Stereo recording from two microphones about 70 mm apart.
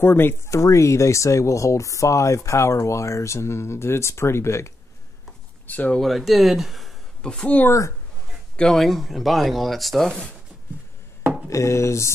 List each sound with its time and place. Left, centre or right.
0.0 s speech: left
0.5 s speech: left
5.7 s speech: left
5.9 s speech: centre
7.2 s a woman's voice: centre
8.5 s speech: centre
11.4 s speech: left